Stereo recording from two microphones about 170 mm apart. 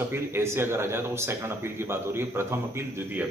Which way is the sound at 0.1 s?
15° right (ahead or behind).